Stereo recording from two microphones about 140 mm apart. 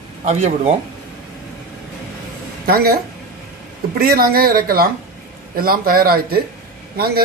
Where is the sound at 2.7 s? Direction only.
90° right.